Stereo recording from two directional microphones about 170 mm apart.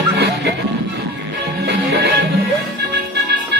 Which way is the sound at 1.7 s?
80° right.